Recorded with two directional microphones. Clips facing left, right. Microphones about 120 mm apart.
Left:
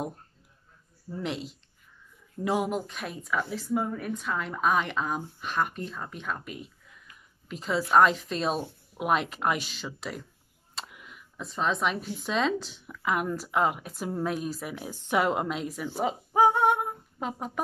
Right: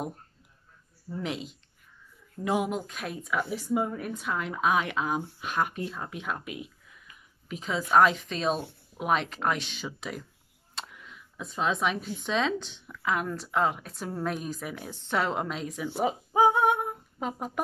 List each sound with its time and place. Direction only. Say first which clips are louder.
1.1 s speech: even; centre (ahead or behind)
4.0 s speech: even; 5° right (ahead or behind)
16.1 s a sound: left 1 dB; 5° right (ahead or behind)